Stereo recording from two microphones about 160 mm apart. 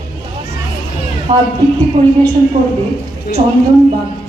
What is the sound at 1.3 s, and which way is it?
Speech, 30° right (ahead or behind).